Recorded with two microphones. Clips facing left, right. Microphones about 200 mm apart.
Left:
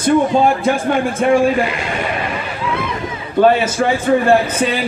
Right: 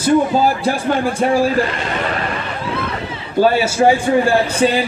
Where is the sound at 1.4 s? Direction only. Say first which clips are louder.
Left 1 dB; 10° left (ahead or behind).